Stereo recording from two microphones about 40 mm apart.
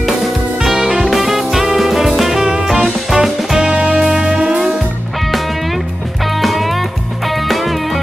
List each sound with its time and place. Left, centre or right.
0.7 s music: centre
6.4 s music: centre